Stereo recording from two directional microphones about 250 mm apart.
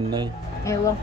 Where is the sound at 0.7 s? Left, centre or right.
Centre.